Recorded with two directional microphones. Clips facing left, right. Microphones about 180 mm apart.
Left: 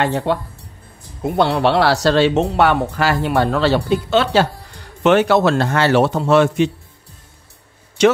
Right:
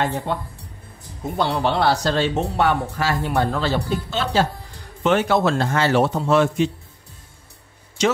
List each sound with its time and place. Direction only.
0.0 s a man's voice: 80° left
8.0 s speech: 65° left (ahead or behind)